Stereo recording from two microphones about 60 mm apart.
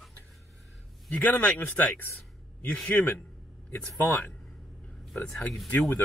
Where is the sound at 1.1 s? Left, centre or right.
Left.